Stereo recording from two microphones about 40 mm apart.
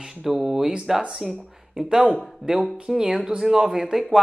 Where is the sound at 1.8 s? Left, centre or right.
Right.